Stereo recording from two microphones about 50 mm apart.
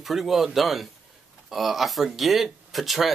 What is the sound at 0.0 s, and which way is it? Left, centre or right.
Speech, centre.